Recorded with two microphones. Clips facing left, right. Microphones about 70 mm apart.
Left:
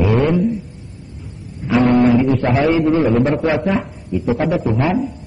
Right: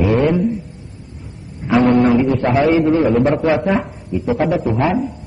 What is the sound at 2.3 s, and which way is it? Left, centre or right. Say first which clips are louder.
A man's voice: right 1 dB; centre.